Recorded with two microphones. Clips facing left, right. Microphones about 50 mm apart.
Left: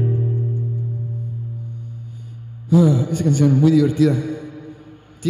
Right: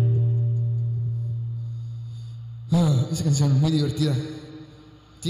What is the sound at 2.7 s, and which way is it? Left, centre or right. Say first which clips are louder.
A man's voice: left 8 dB; left.